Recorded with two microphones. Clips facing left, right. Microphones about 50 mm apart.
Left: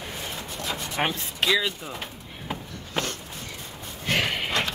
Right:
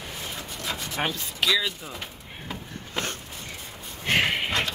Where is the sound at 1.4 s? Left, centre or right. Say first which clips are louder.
Left 1 dB; centre.